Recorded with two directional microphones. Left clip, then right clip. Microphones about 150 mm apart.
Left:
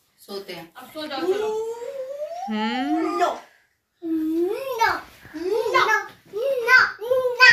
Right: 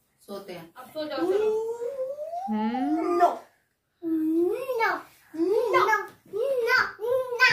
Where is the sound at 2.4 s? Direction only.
15° right (ahead or behind).